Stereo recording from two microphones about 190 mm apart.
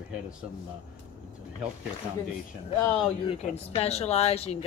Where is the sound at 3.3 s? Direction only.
35° left (ahead or behind).